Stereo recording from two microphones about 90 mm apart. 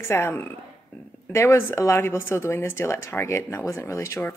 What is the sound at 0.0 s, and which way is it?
A woman's voice, 25° left (ahead or behind).